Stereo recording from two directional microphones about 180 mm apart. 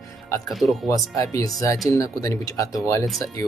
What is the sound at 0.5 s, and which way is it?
Speech, centre (ahead or behind).